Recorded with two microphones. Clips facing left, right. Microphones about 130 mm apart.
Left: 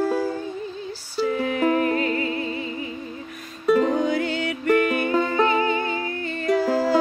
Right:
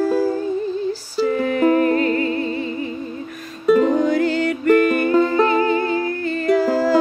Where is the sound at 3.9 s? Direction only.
45° right (ahead or behind).